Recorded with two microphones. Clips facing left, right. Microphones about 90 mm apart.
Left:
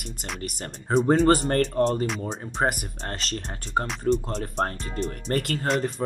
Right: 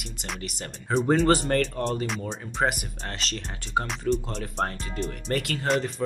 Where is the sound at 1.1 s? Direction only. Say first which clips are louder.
Left 1 dB; 40° left (ahead or behind).